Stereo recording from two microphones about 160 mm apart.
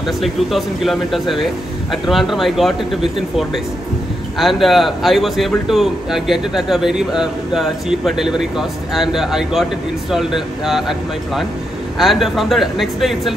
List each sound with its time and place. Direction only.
0.2 s a man's voice: centre (ahead or behind)